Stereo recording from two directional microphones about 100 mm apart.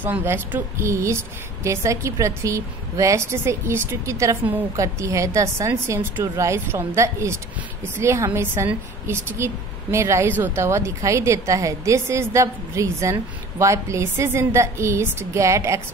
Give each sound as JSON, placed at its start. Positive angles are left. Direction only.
{"t": 0.0, "sound": "a woman's voice", "side_deg": -20}